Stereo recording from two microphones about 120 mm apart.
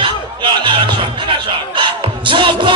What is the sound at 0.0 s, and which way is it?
Music, 40° right (ahead or behind).